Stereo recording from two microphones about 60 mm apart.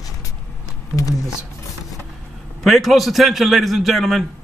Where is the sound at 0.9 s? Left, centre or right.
Left.